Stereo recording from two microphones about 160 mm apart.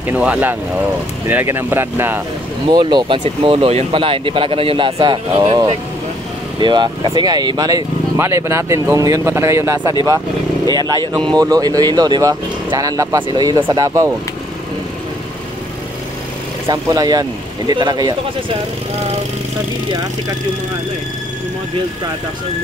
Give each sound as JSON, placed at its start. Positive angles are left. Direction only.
{"t": 0.1, "sound": "speech", "side_deg": -10}
{"t": 2.7, "sound": "speech", "side_deg": -30}
{"t": 16.6, "sound": "speech", "side_deg": -25}
{"t": 19.9, "sound": "speech", "side_deg": -25}